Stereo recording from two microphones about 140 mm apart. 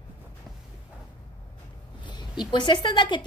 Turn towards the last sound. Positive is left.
turn(degrees=35)  # may be behind; listen again after turning